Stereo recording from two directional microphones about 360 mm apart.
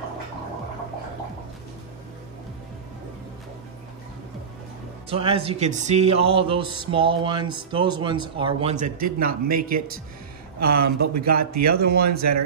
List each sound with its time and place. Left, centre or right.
5.1 s music: centre
9.5 s speech: right
11.8 s speech: right
12.2 s speech: right